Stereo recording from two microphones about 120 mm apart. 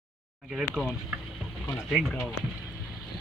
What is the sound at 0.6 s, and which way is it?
Speech, centre (ahead or behind).